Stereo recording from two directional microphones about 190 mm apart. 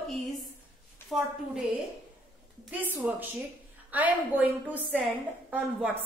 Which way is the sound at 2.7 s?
10° right (ahead or behind).